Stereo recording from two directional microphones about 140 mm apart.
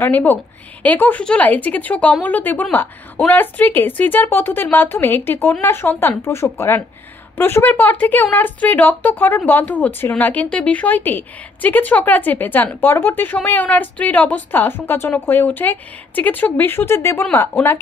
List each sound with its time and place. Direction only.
0.0 s speech: 15° left (ahead or behind)